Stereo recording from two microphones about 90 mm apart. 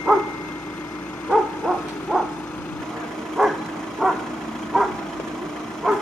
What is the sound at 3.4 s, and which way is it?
Vehicle, centre (ahead or behind).